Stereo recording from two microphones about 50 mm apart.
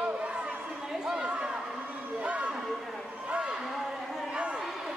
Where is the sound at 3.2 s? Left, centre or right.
Right.